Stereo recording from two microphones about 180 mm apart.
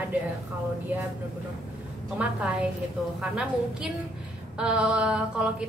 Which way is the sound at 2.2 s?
5° right (ahead or behind).